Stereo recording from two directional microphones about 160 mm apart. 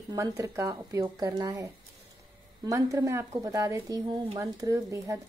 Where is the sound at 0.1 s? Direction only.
20° right (ahead or behind).